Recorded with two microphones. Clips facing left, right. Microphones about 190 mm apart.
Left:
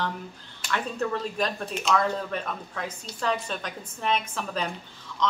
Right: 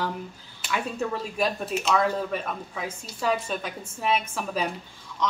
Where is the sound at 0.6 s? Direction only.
10° right (ahead or behind).